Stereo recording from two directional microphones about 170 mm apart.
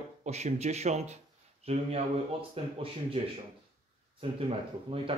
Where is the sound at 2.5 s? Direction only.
35° right (ahead or behind).